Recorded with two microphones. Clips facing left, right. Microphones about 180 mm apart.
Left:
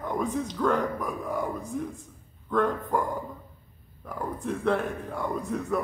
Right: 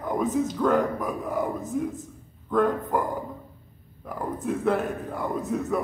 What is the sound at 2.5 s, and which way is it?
Speech, centre (ahead or behind).